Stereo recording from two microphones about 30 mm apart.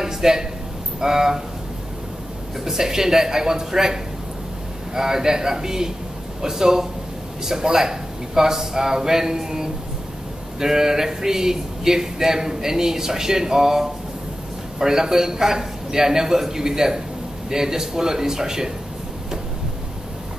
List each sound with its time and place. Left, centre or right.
0.0 s a sound: centre
1.0 s speech: centre
2.6 s a man's voice: centre